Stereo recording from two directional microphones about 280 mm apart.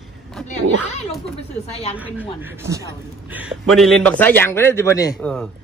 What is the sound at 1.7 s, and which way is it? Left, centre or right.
Speech, left.